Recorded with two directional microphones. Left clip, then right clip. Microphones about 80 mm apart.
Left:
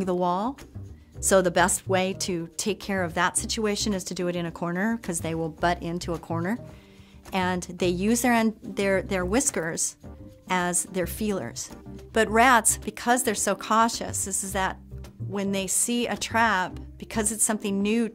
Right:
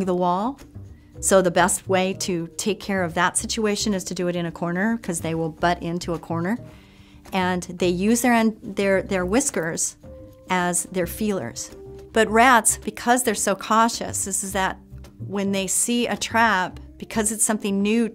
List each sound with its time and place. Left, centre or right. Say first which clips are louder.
0.0 s a woman's voice: right 3 dB; left